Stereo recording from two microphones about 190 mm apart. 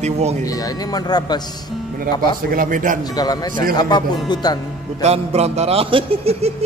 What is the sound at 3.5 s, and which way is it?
Speech, 50° right (ahead or behind).